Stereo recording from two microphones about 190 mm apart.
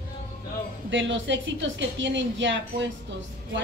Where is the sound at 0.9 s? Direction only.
75° right (ahead or behind).